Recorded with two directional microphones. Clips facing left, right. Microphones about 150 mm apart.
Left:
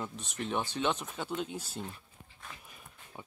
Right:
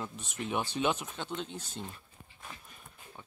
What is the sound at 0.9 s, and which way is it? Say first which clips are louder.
Speech: left 2 dB; centre (ahead or behind).